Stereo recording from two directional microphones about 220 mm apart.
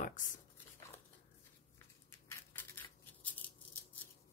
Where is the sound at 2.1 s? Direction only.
10° left (ahead or behind).